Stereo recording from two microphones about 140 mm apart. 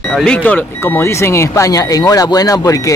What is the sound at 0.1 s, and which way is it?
Speech, 5° left (ahead or behind).